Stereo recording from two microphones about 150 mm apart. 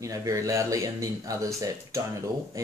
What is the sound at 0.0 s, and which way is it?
Speech, 20° right (ahead or behind).